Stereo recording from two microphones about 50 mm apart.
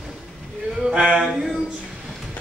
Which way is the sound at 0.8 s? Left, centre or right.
Centre.